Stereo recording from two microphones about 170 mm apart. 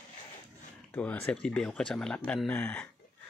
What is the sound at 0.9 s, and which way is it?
Speech, 10° left (ahead or behind).